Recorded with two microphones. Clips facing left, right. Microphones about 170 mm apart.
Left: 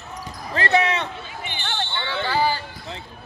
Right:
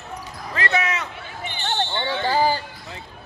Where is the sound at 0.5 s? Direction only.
30° left (ahead or behind).